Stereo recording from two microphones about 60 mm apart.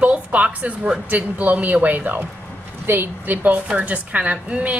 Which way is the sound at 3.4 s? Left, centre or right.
Right.